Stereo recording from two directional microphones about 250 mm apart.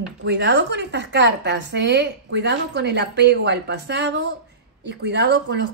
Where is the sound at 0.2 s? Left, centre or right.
Right.